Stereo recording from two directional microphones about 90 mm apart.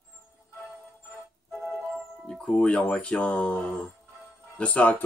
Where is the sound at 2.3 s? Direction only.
10° left (ahead or behind).